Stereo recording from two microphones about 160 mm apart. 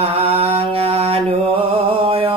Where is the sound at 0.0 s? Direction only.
40° right (ahead or behind).